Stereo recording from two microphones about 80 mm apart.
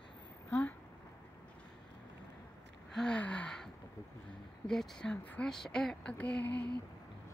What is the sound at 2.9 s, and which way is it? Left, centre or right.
Gasp, centre.